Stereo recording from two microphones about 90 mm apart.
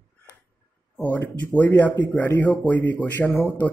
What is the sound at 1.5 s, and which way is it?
A man's voice, 20° left (ahead or behind).